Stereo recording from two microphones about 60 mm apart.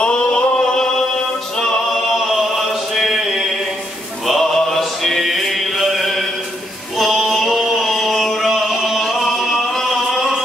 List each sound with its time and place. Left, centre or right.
0.0 s music: centre
2.3 s a sound: centre
7.0 s chant: centre
8.5 s music: centre